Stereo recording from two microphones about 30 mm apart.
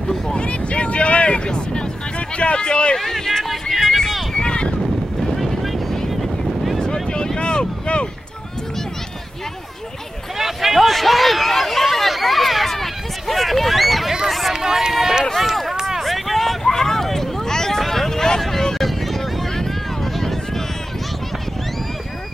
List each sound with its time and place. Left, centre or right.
0.3 s speech: left
1.4 s speech: left
2.1 s speech: left
3.0 s speech: centre
3.7 s speech: centre
4.4 s a sound: left
5.2 s vehicle: centre
6.8 s boat: left
10.3 s a sound: centre
14.5 s run: centre
16.0 s a sound: centre
18.8 s vehicle: centre
20.0 s run: centre